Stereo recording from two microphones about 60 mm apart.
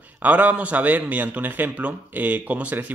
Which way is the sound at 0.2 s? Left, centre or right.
Right.